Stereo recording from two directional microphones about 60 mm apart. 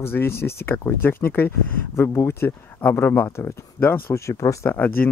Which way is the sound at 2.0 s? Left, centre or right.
Left.